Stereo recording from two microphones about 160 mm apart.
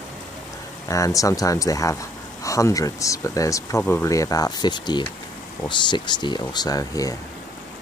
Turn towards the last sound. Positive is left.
turn(degrees=20)  # may be behind; listen again after turning